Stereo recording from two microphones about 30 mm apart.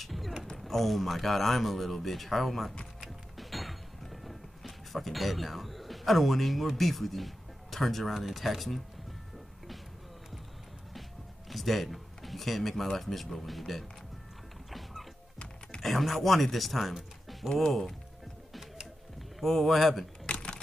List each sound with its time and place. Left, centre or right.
0.0 s mechanisms: centre
0.6 s speech: centre
3.0 s music: centre
8.4 s speech: centre
10.9 s music: centre
12.9 s speech: centre
14.7 s music: centre
15.8 s speech: centre
17.3 s a sound: centre
19.4 s speech: centre
20.2 s a sound: left